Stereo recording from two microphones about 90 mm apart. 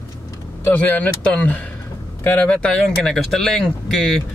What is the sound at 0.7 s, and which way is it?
Speech, 20° left (ahead or behind).